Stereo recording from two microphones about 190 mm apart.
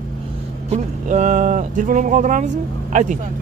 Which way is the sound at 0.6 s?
35° right (ahead or behind).